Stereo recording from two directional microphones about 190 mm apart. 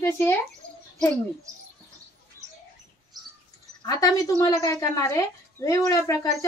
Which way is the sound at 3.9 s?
20° left (ahead or behind).